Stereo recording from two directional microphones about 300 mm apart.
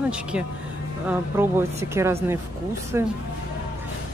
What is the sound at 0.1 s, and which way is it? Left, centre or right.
Speech, centre.